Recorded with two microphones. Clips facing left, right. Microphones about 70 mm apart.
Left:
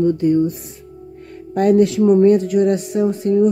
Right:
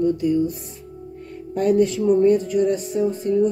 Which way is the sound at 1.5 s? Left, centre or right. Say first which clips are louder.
Left 4 dB; left.